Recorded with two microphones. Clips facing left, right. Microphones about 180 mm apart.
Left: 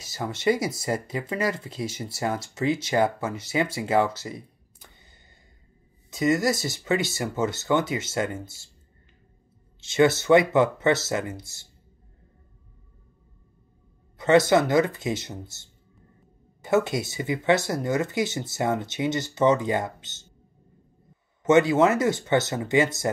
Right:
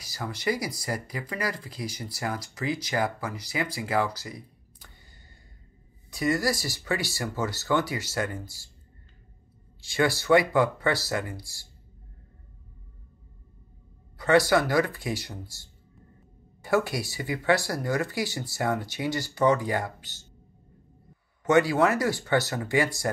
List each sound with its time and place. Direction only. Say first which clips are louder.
0.0 s speech: left 5 dB; 25° left (ahead or behind)
6.0 s speech: left 3 dB; 20° left (ahead or behind)
9.8 s speech: left 6 dB; 20° left (ahead or behind)
14.1 s speech: left 3 dB; 20° left (ahead or behind)
21.5 s speech: left 3 dB; 20° left (ahead or behind)